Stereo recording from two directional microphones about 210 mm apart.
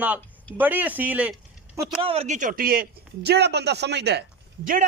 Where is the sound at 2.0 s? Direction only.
30° right (ahead or behind).